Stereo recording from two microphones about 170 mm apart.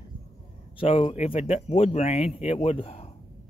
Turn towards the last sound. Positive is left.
turn(degrees=35)  # may be behind; listen again after turning